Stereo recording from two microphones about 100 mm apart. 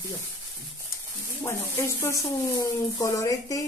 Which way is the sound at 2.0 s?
30° left (ahead or behind).